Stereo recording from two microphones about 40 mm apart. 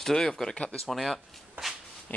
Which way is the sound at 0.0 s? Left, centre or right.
Centre.